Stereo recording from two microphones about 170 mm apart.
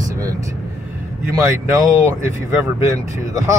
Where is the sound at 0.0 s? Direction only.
20° right (ahead or behind).